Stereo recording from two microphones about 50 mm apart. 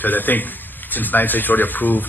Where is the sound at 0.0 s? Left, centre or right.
Left.